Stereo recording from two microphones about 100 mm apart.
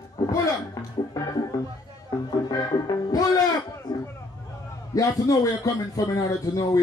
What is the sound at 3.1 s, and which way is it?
Music, 35° left (ahead or behind).